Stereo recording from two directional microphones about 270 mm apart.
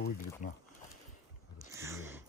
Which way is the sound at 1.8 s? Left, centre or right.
Centre.